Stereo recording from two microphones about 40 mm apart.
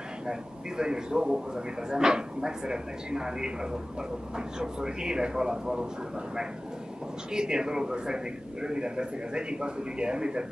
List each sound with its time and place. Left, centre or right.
0.3 s a man's voice: centre